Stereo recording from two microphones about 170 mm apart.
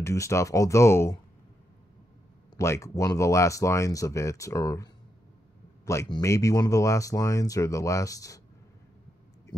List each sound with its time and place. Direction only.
0.0 s speech: 15° left (ahead or behind)
2.5 s speech: 20° left (ahead or behind)
5.9 s speech: 20° left (ahead or behind)